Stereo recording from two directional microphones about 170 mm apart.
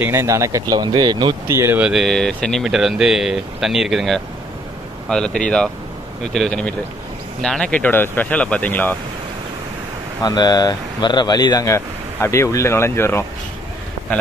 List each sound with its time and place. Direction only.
0.0 s speech: 15° right (ahead or behind); by 8.9 s 10° left (ahead or behind)
10.2 s speech: 25° left (ahead or behind)